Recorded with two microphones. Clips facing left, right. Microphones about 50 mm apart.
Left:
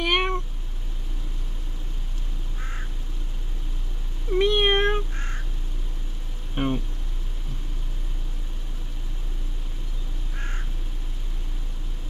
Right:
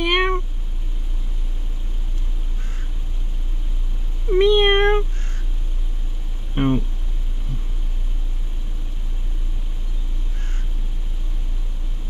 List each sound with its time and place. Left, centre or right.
0.0 s cat: centre
4.3 s cat: centre
4.6 s meow: right
6.5 s a sound: centre